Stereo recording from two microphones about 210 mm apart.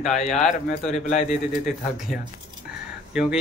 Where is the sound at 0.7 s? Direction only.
35° left (ahead or behind).